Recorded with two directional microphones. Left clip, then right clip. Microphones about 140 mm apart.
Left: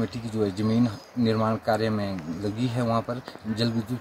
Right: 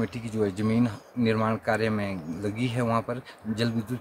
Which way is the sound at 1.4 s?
15° right (ahead or behind).